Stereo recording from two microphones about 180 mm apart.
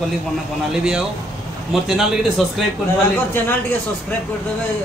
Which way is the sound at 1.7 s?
Centre (ahead or behind).